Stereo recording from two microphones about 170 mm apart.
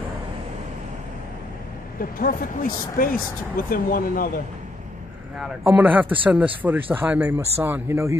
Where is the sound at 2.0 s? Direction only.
55° left (ahead or behind).